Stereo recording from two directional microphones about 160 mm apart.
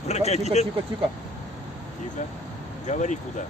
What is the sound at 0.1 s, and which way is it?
Speech, 45° left (ahead or behind).